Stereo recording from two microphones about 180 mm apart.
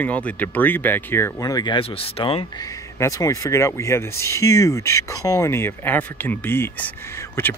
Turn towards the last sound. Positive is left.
turn(degrees=15)  # may be behind; listen again after turning